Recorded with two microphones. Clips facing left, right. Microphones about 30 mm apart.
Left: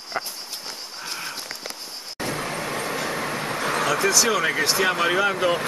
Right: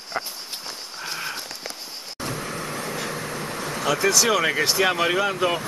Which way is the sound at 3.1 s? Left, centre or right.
Left.